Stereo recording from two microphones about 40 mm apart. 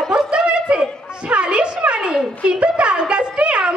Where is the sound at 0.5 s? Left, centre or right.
Right.